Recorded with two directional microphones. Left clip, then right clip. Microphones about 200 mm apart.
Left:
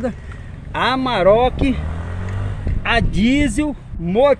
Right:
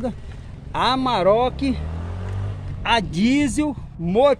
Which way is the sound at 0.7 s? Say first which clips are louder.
Left 2 dB; 10° right (ahead or behind).